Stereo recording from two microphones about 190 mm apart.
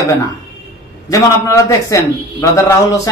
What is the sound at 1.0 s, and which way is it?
A man's voice, 15° left (ahead or behind).